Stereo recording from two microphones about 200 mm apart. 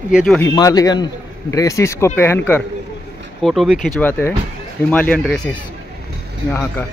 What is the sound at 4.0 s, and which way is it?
Speech, 10° left (ahead or behind).